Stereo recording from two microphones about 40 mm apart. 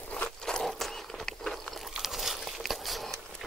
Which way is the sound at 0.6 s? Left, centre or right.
Centre.